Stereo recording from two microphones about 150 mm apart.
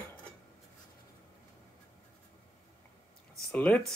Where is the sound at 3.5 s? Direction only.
10° left (ahead or behind).